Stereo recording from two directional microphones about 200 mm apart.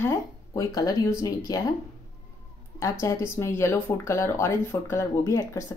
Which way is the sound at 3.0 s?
15° left (ahead or behind).